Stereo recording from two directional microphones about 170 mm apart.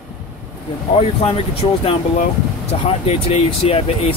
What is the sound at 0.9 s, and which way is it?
Speech, 35° left (ahead or behind).